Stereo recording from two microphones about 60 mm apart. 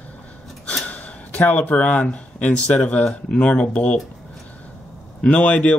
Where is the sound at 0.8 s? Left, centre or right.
Left.